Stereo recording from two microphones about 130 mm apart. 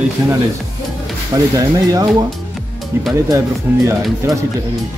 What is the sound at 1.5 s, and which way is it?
Speech, 30° right (ahead or behind).